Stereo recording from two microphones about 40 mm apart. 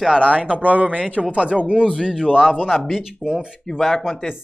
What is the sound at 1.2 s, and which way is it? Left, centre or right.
Speech, right.